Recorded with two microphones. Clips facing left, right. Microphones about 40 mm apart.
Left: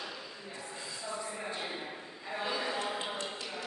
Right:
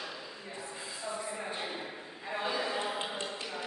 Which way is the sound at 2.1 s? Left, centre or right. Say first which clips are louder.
Right 2 dB; centre.